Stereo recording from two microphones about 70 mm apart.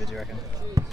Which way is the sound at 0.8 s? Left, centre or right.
Right.